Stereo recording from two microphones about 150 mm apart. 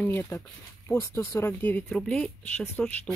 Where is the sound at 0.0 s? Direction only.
15° left (ahead or behind).